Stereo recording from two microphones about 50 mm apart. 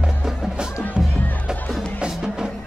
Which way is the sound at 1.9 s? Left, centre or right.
Centre.